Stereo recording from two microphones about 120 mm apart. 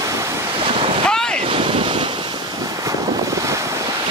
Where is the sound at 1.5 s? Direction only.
45° right (ahead or behind).